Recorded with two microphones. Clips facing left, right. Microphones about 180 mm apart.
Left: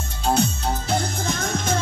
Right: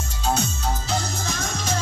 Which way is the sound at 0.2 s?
60° left (ahead or behind).